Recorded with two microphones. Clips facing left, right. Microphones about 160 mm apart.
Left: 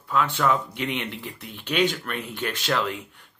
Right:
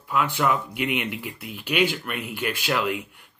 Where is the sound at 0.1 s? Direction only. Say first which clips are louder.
Even; 10° right (ahead or behind).